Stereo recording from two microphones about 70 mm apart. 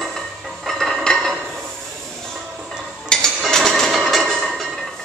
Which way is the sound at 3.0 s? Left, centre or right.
Centre.